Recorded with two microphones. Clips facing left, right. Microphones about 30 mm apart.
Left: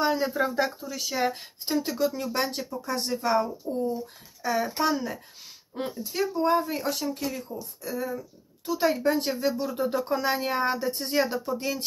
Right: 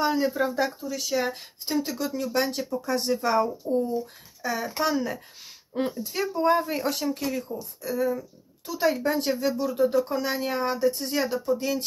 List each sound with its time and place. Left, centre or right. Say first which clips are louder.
0.0 s speech: right 1 dB; centre
2.3 s speech: right 3 dB; centre